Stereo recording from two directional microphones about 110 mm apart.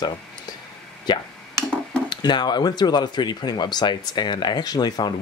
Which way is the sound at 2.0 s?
40° left (ahead or behind).